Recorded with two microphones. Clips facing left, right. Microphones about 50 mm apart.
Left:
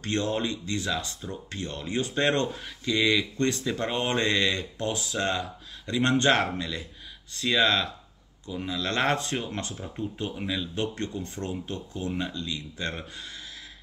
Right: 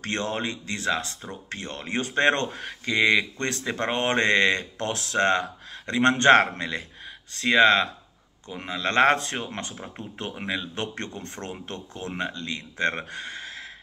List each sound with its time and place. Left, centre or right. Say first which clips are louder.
0.0 s speech: even; right
10.7 s speech: left 2 dB; right
12.1 s speech: right 2 dB; right